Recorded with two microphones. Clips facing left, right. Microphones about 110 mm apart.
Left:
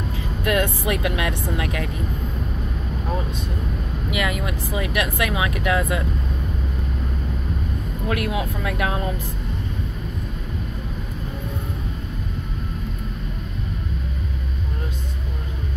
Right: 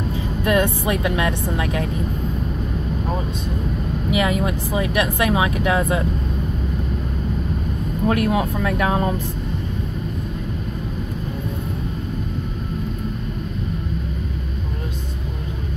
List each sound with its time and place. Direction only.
0.5 s speech: 30° right (ahead or behind)
4.1 s speech: 30° right (ahead or behind)
8.1 s speech: 40° right (ahead or behind)